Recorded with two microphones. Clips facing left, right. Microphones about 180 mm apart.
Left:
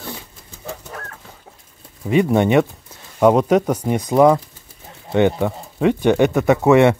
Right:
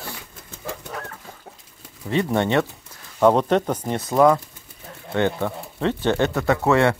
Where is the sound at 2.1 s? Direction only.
15° left (ahead or behind).